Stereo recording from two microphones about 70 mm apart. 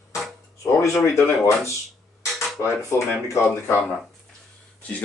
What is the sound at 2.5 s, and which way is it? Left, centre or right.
Speech, left.